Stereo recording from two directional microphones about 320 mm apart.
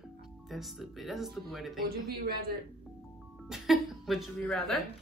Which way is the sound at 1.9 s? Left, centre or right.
Right.